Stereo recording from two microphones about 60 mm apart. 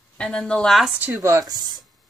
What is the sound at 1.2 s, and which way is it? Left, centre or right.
Speech, right.